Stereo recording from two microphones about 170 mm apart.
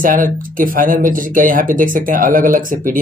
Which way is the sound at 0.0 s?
55° right (ahead or behind).